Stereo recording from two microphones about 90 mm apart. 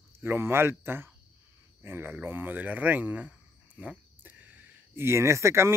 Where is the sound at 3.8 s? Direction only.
15° right (ahead or behind).